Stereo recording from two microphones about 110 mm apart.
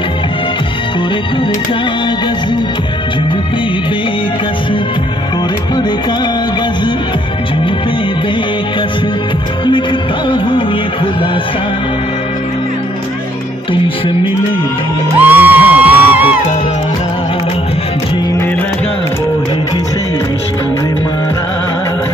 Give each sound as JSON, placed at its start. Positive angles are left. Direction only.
{"t": 15.1, "sound": "music", "side_deg": -15}